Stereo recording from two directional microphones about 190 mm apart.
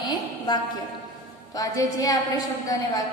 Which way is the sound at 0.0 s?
20° left (ahead or behind).